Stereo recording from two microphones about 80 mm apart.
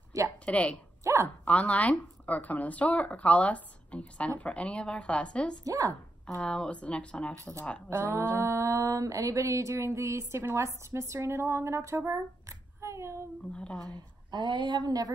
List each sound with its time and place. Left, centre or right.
0.1 s a sound: right
0.5 s speech: centre
1.0 s a sound: right
1.4 s speech: centre
5.6 s speech: right
6.4 s speech: centre
7.9 s a sound: right
13.5 s speech: centre
13.8 s speech: right